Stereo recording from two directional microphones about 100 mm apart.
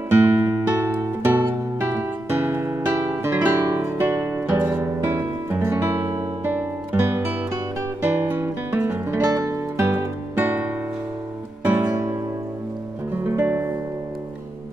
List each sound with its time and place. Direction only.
0.1 s music: 25° right (ahead or behind)
8.0 s guitar: 20° right (ahead or behind)
9.3 s music: 30° right (ahead or behind)